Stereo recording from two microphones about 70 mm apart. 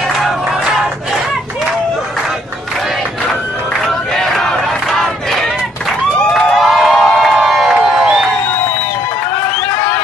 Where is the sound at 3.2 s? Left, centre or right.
Centre.